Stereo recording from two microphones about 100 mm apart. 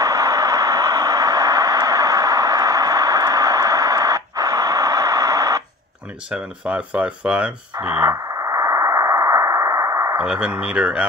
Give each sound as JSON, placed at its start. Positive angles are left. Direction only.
{"t": 0.0, "sound": "a sound", "side_deg": -35}
{"t": 6.3, "sound": "speech", "side_deg": -10}
{"t": 8.1, "sound": "radio", "side_deg": -35}
{"t": 10.1, "sound": "speech", "side_deg": -10}